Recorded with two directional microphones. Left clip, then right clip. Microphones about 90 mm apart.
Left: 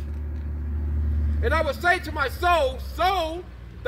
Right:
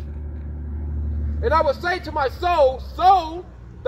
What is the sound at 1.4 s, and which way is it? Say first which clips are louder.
A man's voice: right 5 dB; 40° left (ahead or behind).